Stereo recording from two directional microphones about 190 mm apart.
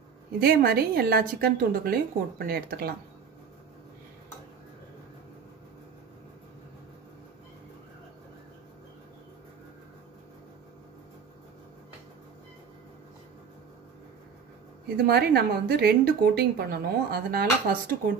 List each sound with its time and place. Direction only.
0.4 s a woman's voice: 55° right (ahead or behind)
15.0 s a woman's voice: 55° right (ahead or behind)